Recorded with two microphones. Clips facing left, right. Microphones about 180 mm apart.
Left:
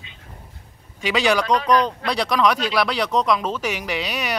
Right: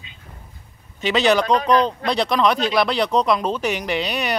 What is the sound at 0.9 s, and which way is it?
Speech, 10° left (ahead or behind).